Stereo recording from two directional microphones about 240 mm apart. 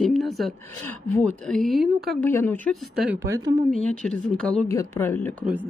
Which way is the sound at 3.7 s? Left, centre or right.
Centre.